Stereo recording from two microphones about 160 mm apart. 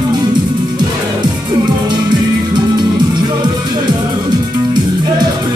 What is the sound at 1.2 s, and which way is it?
Music, 30° right (ahead or behind).